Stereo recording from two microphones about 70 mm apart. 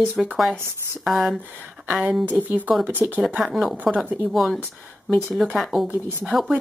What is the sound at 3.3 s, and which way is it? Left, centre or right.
Speech, centre.